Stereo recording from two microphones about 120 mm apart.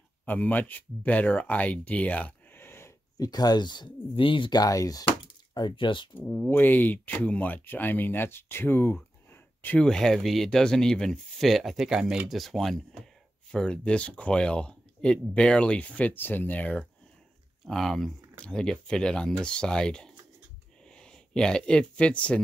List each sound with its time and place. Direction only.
0.2 s speech: 15° left (ahead or behind)
3.2 s speech: 35° left (ahead or behind)
6.1 s speech: 15° left (ahead or behind)
9.8 s speech: 5° left (ahead or behind)